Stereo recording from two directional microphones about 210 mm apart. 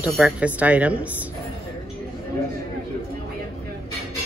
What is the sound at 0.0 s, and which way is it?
Speech, 5° right (ahead or behind).